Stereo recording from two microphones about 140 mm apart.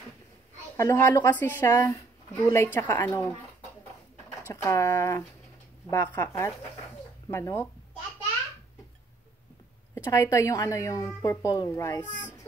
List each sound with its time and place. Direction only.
0.7 s a woman's voice: 20° left (ahead or behind)
4.5 s a woman's voice: 20° left (ahead or behind)
9.9 s a woman's voice: 20° left (ahead or behind)